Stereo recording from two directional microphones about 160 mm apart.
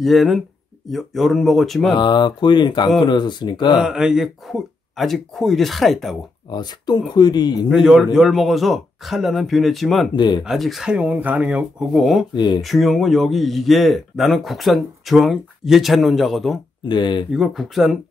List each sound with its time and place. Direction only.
0.0 s a man's voice: centre (ahead or behind)
2.0 s speech: 30° left (ahead or behind)
3.7 s a man's voice: 5° right (ahead or behind)
6.5 s speech: 25° left (ahead or behind)
7.7 s a man's voice: centre (ahead or behind)
10.1 s speech: 30° left (ahead or behind)
10.4 s a man's voice: centre (ahead or behind)
12.4 s speech: 25° left (ahead or behind)
12.6 s a man's voice: centre (ahead or behind)
16.8 s speech: 30° left (ahead or behind)
17.3 s a man's voice: centre (ahead or behind)